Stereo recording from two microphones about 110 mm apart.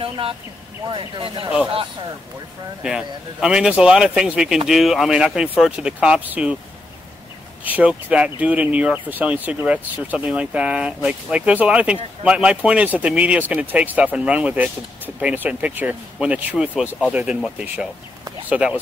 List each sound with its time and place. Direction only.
0.8 s speech: 50° right (ahead or behind)
2.8 s a man's voice: 5° right (ahead or behind)
7.6 s speech: 15° right (ahead or behind)
18.5 s speech: 10° right (ahead or behind)